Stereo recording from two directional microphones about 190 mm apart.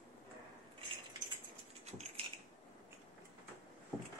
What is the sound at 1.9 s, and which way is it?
Typewriter, 35° right (ahead or behind).